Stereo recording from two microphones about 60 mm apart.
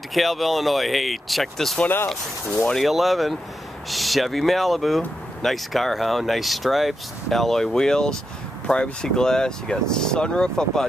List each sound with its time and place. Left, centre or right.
0.1 s speech: centre
1.8 s speech: left
2.8 s speech: centre